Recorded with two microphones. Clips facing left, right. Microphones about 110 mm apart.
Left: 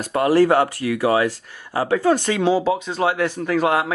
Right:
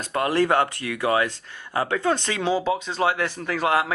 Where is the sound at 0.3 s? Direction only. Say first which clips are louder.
Left 6 dB; 40° left (ahead or behind).